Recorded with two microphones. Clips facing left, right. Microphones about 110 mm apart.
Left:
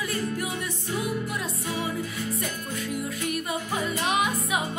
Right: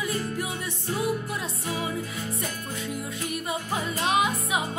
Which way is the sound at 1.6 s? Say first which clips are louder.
Right 1 dB; 25° right (ahead or behind).